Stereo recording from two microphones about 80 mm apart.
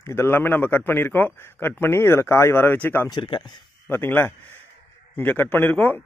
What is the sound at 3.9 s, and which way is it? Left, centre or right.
A man's voice, left.